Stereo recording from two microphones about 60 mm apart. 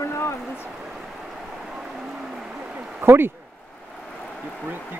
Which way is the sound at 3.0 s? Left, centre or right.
Right.